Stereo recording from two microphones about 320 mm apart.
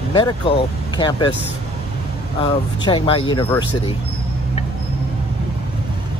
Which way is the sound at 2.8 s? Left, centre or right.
Centre.